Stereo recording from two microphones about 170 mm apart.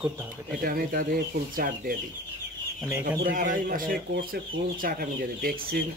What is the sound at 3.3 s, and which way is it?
Speech, 55° right (ahead or behind).